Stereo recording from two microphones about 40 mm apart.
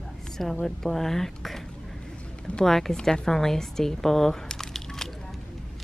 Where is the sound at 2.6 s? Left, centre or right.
Centre.